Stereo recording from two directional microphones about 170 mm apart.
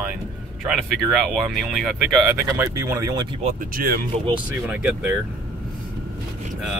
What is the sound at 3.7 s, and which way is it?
Speech, 60° right (ahead or behind).